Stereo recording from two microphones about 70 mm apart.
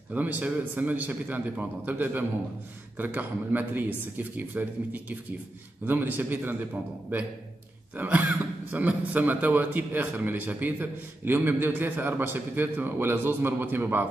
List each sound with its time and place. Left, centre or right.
0.1 s a man's voice: right
7.9 s a man's voice: right